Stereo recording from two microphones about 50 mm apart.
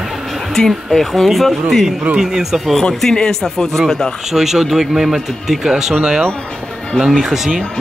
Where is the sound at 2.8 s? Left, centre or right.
Centre.